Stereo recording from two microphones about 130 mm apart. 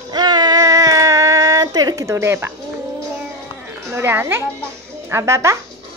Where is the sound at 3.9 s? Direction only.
15° right (ahead or behind).